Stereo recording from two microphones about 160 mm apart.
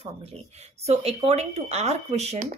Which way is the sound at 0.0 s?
40° right (ahead or behind).